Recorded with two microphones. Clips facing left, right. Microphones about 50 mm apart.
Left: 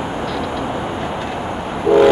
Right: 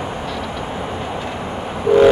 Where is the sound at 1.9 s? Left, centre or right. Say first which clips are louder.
Left 1 dB; centre.